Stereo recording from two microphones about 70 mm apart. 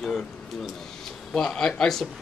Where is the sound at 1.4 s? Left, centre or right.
Centre.